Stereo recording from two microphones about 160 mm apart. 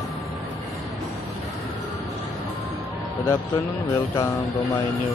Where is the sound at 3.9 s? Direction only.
20° left (ahead or behind).